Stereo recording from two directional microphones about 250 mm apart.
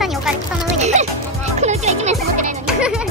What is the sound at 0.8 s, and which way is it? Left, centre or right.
Music, right.